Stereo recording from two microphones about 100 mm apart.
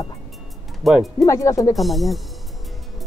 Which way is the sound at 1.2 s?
35° left (ahead or behind).